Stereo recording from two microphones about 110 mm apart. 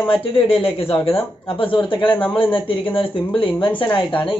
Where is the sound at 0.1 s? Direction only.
55° left (ahead or behind).